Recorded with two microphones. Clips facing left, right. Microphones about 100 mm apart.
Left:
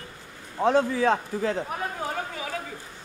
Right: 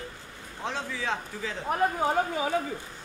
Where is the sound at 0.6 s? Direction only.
50° left (ahead or behind).